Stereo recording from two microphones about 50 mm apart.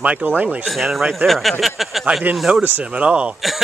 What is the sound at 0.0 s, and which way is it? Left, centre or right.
Speech, right.